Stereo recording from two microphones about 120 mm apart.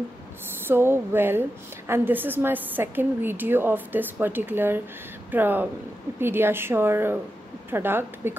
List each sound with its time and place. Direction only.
0.5 s a woman's voice: 20° right (ahead or behind)